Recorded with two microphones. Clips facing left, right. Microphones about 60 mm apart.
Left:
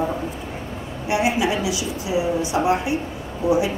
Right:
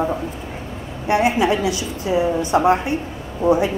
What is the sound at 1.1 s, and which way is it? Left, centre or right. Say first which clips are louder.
A woman's voice: right 4 dB; right.